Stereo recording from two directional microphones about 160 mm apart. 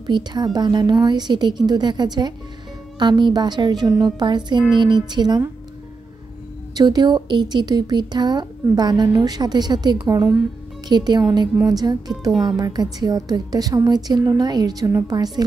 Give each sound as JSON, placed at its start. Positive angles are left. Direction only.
{"t": 0.0, "sound": "a woman's voice", "side_deg": -25}
{"t": 6.7, "sound": "a woman's voice", "side_deg": -25}